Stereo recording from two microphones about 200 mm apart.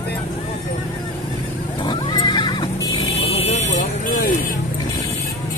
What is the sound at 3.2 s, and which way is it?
Vehicle, 30° left (ahead or behind).